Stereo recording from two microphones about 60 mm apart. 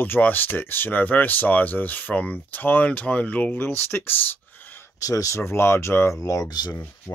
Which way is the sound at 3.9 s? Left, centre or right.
Left.